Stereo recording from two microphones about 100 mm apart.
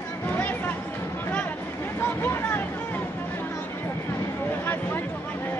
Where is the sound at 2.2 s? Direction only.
20° left (ahead or behind).